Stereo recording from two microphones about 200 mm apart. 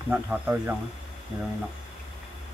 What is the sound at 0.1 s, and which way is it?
Speech, 10° right (ahead or behind).